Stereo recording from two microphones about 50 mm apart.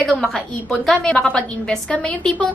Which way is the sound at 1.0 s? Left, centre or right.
Left.